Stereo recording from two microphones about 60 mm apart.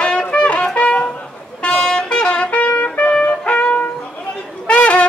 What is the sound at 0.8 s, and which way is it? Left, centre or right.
Music, left.